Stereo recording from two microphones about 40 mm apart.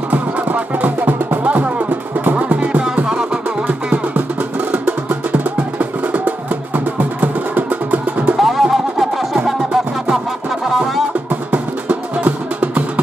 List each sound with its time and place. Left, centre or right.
0.1 s music: right
4.8 s music: right
8.4 s music: centre
11.5 s music: right